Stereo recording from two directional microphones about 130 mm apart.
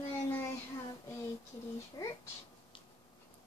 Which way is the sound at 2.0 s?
25° left (ahead or behind).